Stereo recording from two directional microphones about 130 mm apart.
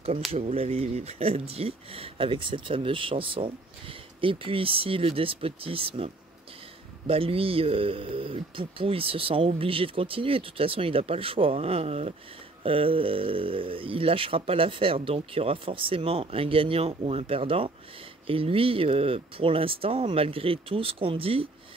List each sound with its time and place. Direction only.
0.3 s speech: 50° right (ahead or behind)